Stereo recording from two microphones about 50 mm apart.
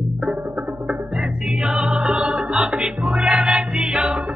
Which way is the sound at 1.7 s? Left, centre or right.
Centre.